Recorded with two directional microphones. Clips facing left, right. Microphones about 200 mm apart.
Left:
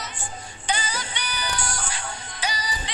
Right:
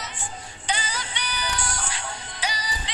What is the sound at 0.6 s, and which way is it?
Music, 45° left (ahead or behind).